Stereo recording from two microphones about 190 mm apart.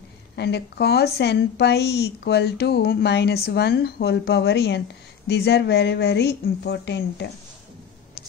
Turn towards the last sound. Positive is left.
turn(degrees=65)  # may be behind; listen again after turning